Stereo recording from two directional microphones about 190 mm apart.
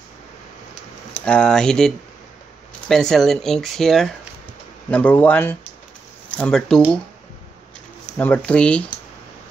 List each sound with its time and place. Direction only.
1.1 s speech: 5° left (ahead or behind)
8.2 s speech: 5° left (ahead or behind)